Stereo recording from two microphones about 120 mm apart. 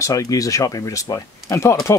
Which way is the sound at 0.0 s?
30° left (ahead or behind).